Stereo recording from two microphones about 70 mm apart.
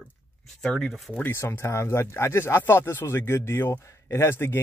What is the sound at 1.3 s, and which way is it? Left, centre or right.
Speech, left.